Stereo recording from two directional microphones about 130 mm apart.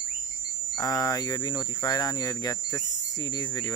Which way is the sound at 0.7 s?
25° left (ahead or behind).